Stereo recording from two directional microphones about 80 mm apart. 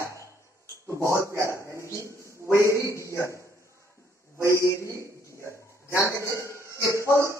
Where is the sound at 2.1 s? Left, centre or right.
Left.